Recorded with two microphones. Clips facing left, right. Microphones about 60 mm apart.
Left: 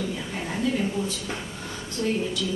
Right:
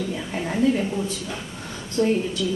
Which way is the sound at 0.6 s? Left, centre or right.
Right.